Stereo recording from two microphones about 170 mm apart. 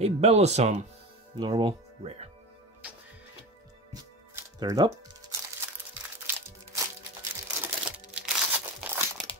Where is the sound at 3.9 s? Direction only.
20° right (ahead or behind).